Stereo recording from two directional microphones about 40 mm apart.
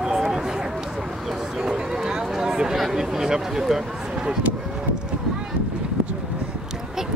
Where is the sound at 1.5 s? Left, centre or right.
Centre.